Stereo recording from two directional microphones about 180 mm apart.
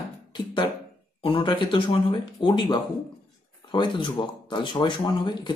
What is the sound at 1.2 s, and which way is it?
Speech, 25° left (ahead or behind).